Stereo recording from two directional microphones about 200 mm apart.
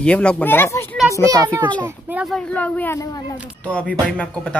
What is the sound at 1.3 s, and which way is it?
Speech, 15° right (ahead or behind).